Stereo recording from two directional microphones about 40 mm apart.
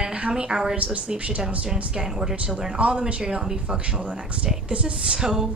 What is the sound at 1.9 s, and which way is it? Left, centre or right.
Speech, centre.